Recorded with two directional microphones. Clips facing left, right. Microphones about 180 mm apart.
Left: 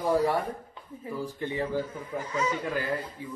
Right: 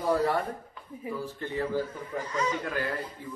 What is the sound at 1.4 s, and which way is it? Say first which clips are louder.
Speech: left 3 dB; 15° left (ahead or behind).